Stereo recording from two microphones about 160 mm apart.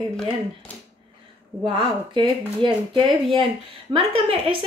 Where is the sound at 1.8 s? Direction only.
30° right (ahead or behind).